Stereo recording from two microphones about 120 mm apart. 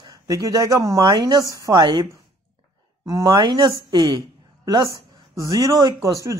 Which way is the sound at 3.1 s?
35° right (ahead or behind).